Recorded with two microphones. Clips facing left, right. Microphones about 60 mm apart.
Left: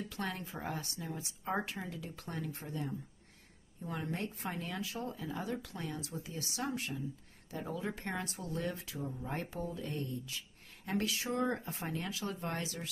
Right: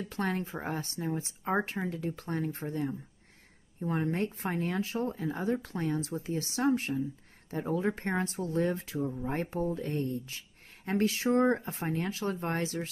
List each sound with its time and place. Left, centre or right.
0.0 s speech: right
9.0 s speech: centre
9.3 s speech: right